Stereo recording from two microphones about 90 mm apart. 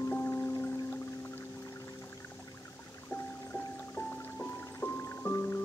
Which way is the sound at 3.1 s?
20° left (ahead or behind).